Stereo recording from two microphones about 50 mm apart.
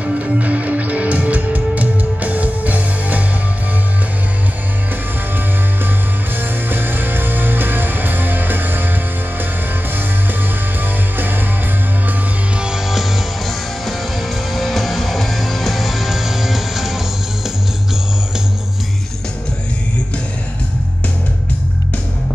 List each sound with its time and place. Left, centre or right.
0.0 s music: right
6.3 s music: right
10.8 s music: right
12.5 s music: centre